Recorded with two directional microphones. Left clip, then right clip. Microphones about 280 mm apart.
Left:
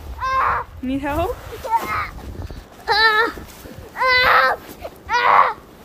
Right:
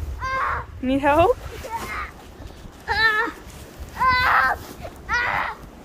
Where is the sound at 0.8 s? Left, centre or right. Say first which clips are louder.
Right 5 dB; centre.